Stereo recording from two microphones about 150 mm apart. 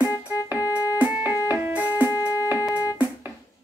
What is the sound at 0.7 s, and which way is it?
Music, 10° right (ahead or behind).